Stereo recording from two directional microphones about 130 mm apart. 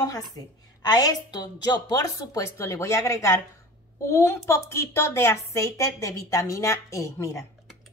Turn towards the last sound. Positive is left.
turn(degrees=20)  # may be behind; listen again after turning